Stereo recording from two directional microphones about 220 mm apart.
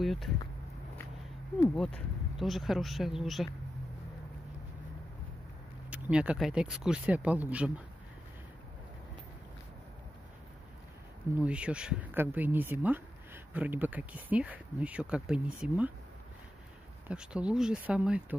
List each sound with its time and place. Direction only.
0.0 s speech: centre (ahead or behind)
2.3 s speech: centre (ahead or behind)
5.9 s speech: 5° right (ahead or behind)
11.3 s speech: 5° right (ahead or behind)
17.1 s speech: 5° right (ahead or behind)